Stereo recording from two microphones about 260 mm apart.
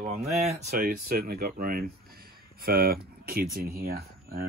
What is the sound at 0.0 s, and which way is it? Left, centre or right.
Speech, right.